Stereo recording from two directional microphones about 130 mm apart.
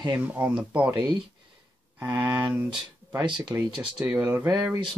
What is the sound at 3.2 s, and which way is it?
Speech, 40° right (ahead or behind).